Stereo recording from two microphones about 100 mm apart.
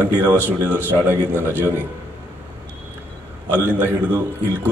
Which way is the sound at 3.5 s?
20° right (ahead or behind).